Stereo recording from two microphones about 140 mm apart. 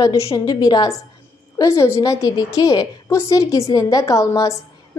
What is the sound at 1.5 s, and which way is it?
A woman's voice, 20° left (ahead or behind).